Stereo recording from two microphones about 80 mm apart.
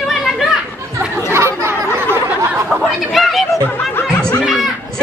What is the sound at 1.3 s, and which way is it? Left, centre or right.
Speech, right.